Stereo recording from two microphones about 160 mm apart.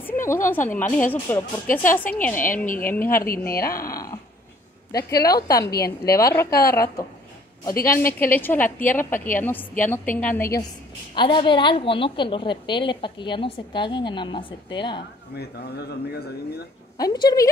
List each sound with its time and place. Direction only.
0.0 s a woman's voice: 15° left (ahead or behind)
2.5 s speech: 60° left (ahead or behind)
3.3 s speech: 70° left (ahead or behind)
3.7 s a woman's voice: 20° left (ahead or behind)
11.1 s a woman's voice: 30° left (ahead or behind)
15.3 s speech: 85° left
17.0 s a woman's voice: 25° left (ahead or behind)